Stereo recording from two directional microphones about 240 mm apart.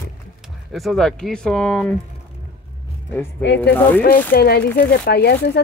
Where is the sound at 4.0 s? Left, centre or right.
Left.